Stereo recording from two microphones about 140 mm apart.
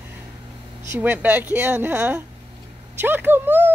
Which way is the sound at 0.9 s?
15° right (ahead or behind).